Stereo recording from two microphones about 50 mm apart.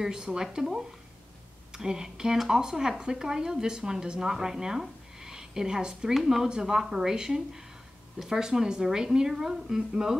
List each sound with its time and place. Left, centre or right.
0.0 s a woman's voice: centre